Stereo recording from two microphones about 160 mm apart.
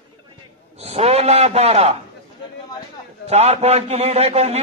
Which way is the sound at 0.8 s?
40° right (ahead or behind).